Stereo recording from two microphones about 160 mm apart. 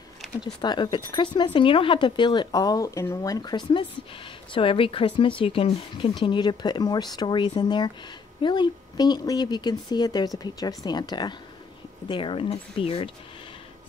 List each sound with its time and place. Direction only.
0.4 s speech: 25° left (ahead or behind)